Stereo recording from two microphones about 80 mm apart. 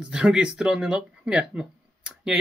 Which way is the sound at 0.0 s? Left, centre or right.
Centre.